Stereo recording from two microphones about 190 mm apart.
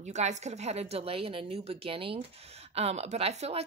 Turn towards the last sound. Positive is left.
turn(degrees=-35)  # may be behind; listen again after turning